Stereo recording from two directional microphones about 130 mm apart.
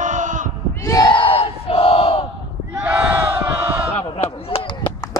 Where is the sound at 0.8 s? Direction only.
30° left (ahead or behind).